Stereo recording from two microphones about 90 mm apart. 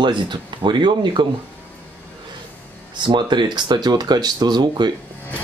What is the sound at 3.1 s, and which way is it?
Speech, 60° right (ahead or behind).